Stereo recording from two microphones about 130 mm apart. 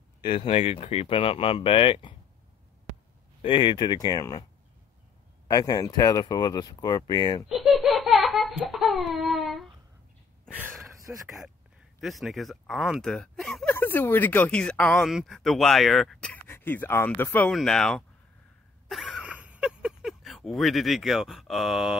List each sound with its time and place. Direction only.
0.2 s speech: 45° left (ahead or behind)
3.4 s speech: 40° left (ahead or behind)
5.5 s speech: 30° left (ahead or behind)
7.4 s baby cry: centre (ahead or behind)
11.1 s speech: 10° right (ahead or behind)
13.7 s speech: 15° left (ahead or behind)
16.4 s speech: 15° left (ahead or behind)
17.5 s speech: 5° left (ahead or behind)
18.9 s a sound: centre (ahead or behind)